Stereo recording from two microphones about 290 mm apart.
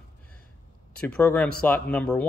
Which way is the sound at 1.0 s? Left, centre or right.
Centre.